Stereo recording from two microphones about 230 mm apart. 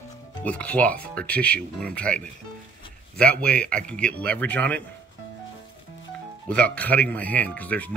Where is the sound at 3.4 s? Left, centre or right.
Centre.